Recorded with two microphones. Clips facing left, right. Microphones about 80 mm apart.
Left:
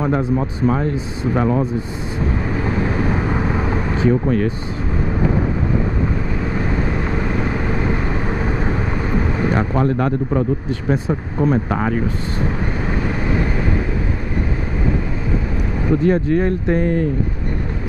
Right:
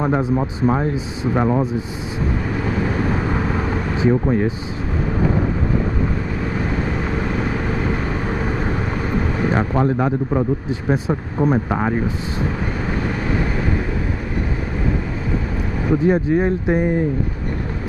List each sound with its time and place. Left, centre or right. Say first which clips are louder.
0.0 s speech: even; centre
3.3 s vehicle: left 1 dB; centre
3.9 s speech: even; centre
9.4 s speech: even; centre
15.9 s speech: even; centre